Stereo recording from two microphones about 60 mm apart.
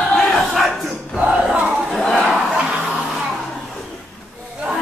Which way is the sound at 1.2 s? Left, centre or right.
Centre.